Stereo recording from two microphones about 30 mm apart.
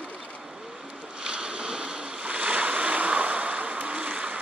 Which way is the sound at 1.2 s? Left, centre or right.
Right.